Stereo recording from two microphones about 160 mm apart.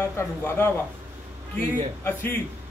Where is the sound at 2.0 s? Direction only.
15° left (ahead or behind).